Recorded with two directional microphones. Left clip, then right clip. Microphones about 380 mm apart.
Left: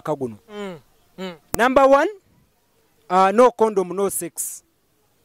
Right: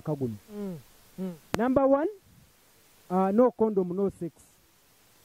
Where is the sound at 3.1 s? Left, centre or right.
Centre.